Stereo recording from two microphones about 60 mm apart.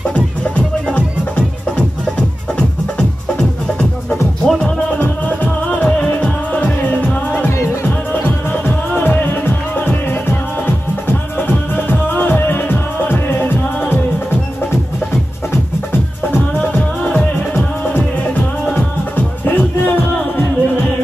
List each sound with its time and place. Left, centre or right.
0.1 s music: centre
4.5 s music: centre
4.9 s music: left
8.1 s music: left
11.1 s music: left
16.7 s music: left